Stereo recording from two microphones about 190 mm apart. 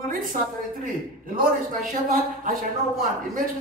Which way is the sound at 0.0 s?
45° right (ahead or behind).